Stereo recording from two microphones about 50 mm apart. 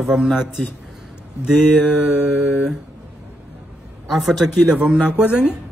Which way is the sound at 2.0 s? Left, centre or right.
Centre.